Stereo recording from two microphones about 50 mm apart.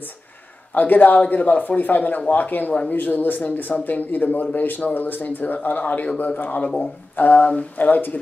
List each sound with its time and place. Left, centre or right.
0.7 s speech: left